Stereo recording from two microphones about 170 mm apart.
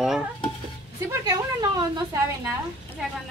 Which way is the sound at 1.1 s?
20° right (ahead or behind).